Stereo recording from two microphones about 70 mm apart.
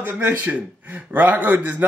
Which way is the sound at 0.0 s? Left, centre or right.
Right.